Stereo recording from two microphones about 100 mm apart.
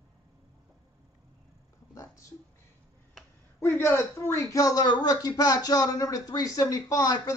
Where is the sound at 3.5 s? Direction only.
25° left (ahead or behind).